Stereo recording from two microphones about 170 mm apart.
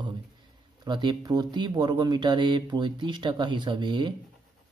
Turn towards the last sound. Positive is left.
turn(degrees=-25)  # may be behind; listen again after turning